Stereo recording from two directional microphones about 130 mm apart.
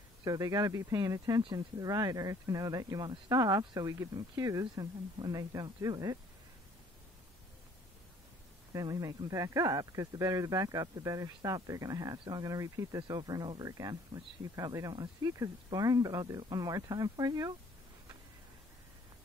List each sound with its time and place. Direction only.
0.2 s speech: 25° right (ahead or behind)
8.7 s speech: 25° right (ahead or behind)